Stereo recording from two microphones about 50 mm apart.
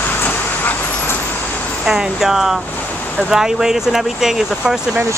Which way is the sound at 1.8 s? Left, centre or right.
Centre.